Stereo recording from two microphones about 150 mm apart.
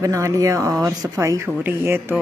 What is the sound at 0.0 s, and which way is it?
Speech, 20° right (ahead or behind).